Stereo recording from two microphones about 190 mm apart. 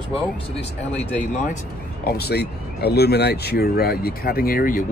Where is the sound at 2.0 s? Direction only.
55° left (ahead or behind).